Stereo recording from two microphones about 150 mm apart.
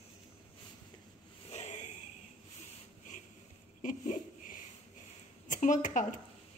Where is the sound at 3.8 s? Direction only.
60° left (ahead or behind).